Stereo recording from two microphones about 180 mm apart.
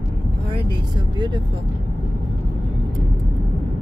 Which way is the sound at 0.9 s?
25° right (ahead or behind).